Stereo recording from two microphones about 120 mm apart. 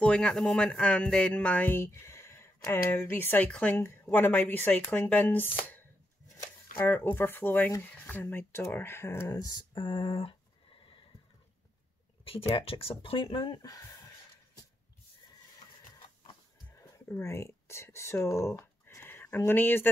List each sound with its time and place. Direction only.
0.0 s speech: 10° left (ahead or behind); by 10.3 s 45° left (ahead or behind)
12.5 s speech: 50° left (ahead or behind); by 14.1 s 30° left (ahead or behind)
16.7 s a sound: 25° left (ahead or behind)
19.3 s speech: 20° left (ahead or behind)